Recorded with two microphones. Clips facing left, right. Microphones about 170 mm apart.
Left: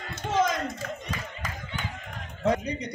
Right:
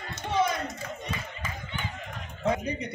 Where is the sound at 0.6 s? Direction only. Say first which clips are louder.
Left 2 dB; 45° left (ahead or behind).